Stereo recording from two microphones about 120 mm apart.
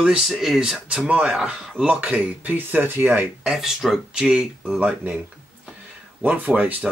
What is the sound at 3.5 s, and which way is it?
Speech, 5° right (ahead or behind).